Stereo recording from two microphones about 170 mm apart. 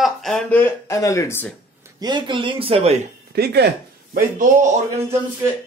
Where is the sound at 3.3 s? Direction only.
70° right (ahead or behind); by 4.6 s 55° right (ahead or behind).